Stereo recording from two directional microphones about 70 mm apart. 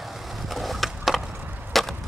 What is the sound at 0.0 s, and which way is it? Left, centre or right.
Skateboard, centre.